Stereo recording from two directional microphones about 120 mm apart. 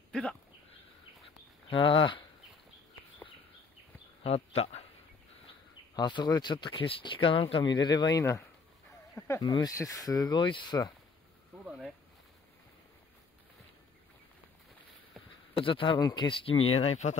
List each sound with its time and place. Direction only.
0.1 s a sound: 5° left (ahead or behind)
1.7 s speech: 45° left (ahead or behind)
4.2 s speech: 60° left (ahead or behind)
5.5 s speech: 40° left (ahead or behind)
11.6 s a sound: 10° right (ahead or behind)
15.6 s speech: 45° left (ahead or behind)
16.0 s speech: 30° left (ahead or behind)
16.3 s speech: 50° left (ahead or behind)